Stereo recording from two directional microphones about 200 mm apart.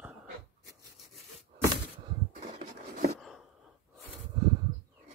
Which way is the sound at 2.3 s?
40° right (ahead or behind).